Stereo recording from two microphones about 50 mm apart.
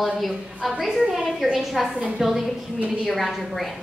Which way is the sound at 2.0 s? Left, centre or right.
Centre.